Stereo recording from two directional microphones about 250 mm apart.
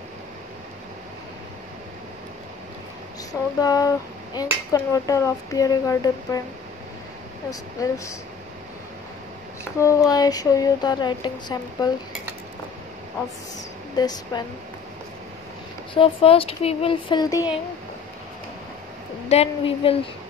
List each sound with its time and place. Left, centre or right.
3.5 s a sound: centre
4.7 s speech: centre
7.8 s speech: centre
9.8 s speech: centre
13.9 s speech: centre
15.9 s speech: left
19.2 s speech: left